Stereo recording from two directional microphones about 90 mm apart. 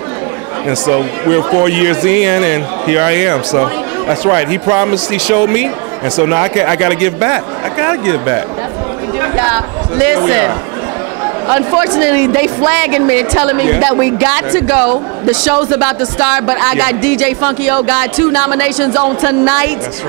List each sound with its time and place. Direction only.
0.7 s a woman's voice: 25° right (ahead or behind)